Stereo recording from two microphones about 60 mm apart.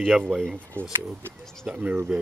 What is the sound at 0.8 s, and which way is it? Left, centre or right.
Speech, right.